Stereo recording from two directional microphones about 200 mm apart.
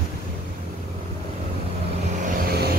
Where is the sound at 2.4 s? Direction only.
50° right (ahead or behind).